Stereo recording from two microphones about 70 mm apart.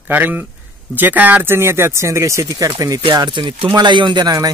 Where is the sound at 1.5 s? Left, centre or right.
Right.